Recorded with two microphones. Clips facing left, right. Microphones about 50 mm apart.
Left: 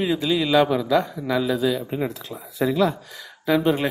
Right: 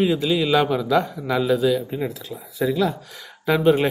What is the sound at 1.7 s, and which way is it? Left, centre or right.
Speech, centre.